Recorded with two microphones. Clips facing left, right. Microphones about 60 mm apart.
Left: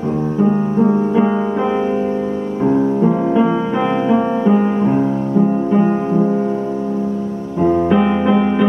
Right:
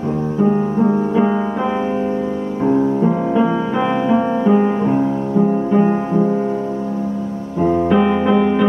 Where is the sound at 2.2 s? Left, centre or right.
Centre.